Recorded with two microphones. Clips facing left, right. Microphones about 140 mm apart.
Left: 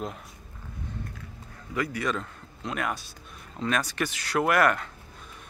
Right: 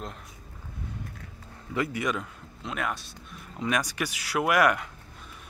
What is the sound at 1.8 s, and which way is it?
Speech, 25° right (ahead or behind).